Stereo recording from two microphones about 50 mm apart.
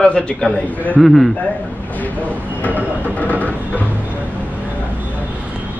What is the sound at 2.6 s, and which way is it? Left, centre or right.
Train, left.